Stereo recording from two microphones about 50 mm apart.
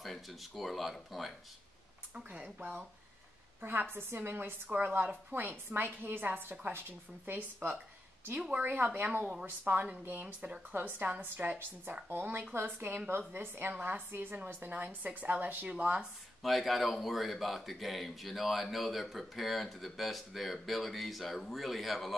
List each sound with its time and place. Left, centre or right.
0.0 s speech: centre
2.2 s speech: right
3.9 s speech: right
10.2 s speech: centre
10.7 s speech: right
16.0 s speech: centre